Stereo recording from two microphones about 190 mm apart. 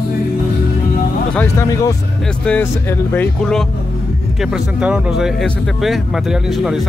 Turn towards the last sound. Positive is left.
turn(degrees=0)  # may be behind; listen again after turning